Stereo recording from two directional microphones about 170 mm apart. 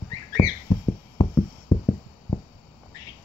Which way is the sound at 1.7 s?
25° left (ahead or behind).